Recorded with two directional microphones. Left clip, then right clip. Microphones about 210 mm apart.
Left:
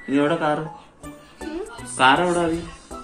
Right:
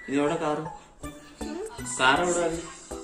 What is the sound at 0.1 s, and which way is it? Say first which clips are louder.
Speech: left 6 dB; 15° left (ahead or behind).